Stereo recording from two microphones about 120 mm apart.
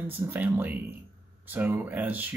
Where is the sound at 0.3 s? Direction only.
15° right (ahead or behind).